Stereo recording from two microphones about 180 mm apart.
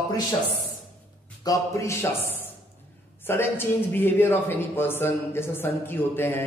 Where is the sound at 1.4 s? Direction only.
20° left (ahead or behind).